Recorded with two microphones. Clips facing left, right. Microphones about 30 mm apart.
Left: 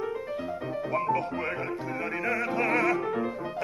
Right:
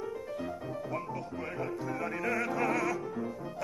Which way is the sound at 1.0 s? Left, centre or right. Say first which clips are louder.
Left 10 dB; left.